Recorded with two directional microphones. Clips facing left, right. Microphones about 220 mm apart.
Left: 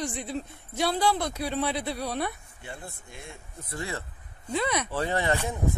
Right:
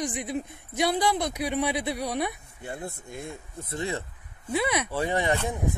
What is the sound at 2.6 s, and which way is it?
Speech, 45° right (ahead or behind).